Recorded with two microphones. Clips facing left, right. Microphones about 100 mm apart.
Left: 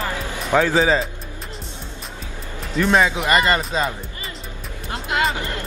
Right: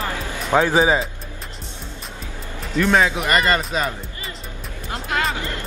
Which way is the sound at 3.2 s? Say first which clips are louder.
Left 1 dB; 20° left (ahead or behind).